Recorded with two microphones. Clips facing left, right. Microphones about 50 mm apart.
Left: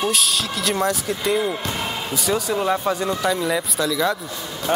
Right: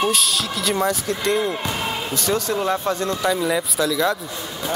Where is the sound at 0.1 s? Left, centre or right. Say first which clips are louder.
Even; centre.